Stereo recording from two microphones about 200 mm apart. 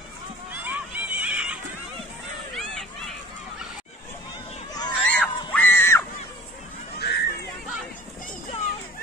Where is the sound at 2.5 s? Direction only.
Centre (ahead or behind).